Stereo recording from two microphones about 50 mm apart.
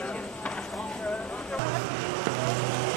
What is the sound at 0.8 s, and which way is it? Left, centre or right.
Vehicle, left.